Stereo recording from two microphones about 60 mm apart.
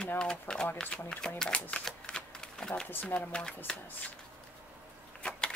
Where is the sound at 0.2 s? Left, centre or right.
Centre.